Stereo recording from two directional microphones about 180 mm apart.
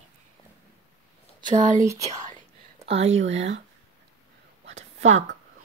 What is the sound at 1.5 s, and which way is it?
Speech, 45° right (ahead or behind).